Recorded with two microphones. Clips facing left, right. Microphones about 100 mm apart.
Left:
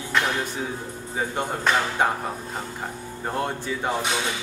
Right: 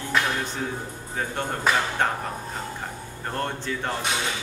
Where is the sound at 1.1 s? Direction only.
10° left (ahead or behind).